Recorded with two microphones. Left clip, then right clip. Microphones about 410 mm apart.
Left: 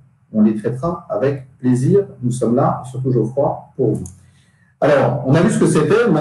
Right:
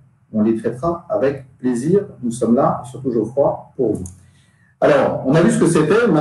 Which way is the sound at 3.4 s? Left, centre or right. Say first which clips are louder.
Right 2 dB; centre.